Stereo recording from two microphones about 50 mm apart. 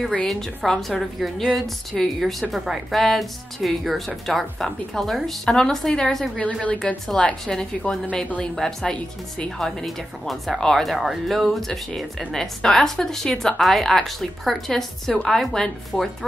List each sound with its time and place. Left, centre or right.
0.3 s a woman's voice: centre
6.3 s a woman's voice: left
7.4 s a woman's voice: centre